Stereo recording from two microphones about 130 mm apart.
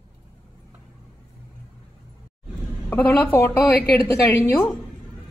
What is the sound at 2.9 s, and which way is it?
Speech, 15° left (ahead or behind).